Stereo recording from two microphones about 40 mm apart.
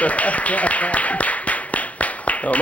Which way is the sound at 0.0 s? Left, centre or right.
Left.